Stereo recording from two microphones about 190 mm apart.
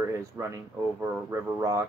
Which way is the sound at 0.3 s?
10° right (ahead or behind).